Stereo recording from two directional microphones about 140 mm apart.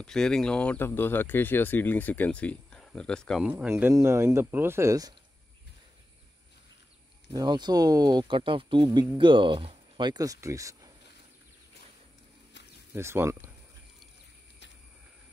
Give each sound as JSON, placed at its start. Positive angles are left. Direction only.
{"t": 0.0, "sound": "speech", "side_deg": 5}
{"t": 3.4, "sound": "speech", "side_deg": -10}
{"t": 7.3, "sound": "speech", "side_deg": -30}
{"t": 12.9, "sound": "speech", "side_deg": -20}